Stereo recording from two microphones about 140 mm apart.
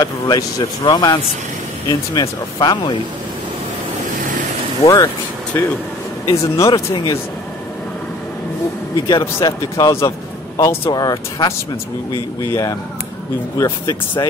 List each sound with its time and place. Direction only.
0.0 s speech: 30° left (ahead or behind)
4.8 s speech: 25° left (ahead or behind)
6.7 s speech: 35° left (ahead or behind)
9.0 s speech: 25° left (ahead or behind)